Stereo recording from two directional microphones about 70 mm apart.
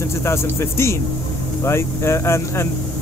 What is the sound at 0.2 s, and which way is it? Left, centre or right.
Speech, left.